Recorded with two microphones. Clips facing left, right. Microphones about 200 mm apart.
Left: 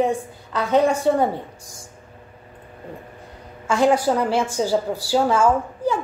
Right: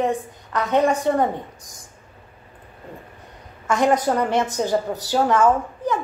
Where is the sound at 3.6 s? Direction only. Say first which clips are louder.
Left 1 dB; 10° left (ahead or behind).